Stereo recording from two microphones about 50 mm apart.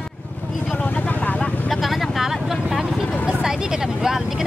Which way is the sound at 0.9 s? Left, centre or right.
Left.